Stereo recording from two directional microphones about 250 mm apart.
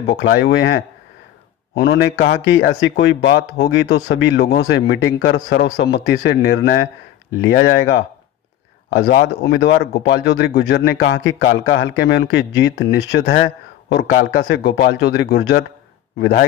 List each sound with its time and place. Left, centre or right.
0.0 s a man's voice: left